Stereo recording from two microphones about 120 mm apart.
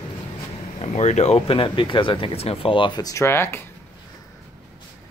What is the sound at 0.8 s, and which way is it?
Speech, 70° left (ahead or behind).